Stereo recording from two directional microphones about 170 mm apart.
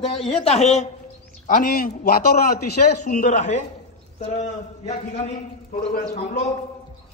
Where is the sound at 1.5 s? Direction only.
55° left (ahead or behind).